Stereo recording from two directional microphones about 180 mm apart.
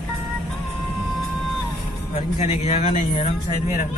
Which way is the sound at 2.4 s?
40° left (ahead or behind).